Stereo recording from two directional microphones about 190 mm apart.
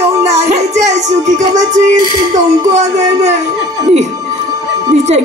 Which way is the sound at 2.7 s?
35° right (ahead or behind).